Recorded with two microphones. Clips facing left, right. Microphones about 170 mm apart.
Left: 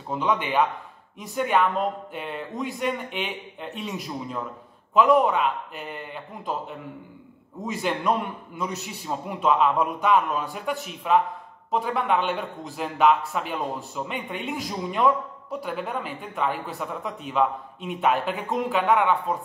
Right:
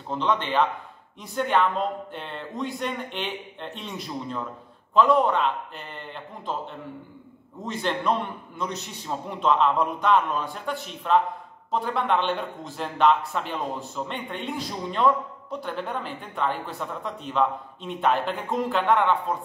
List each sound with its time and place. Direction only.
0.1 s a man's voice: 10° left (ahead or behind)